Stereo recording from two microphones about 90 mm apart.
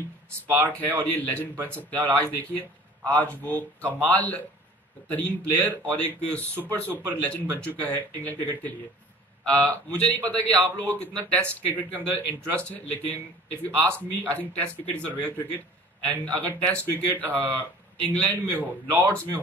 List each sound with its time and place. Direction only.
0.8 s a man's voice: 20° left (ahead or behind)
18.5 s a man's voice: 20° right (ahead or behind)
19.0 s a man's voice: 20° left (ahead or behind)